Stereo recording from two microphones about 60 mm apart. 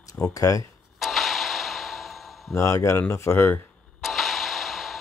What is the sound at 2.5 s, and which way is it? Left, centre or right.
Speech, left.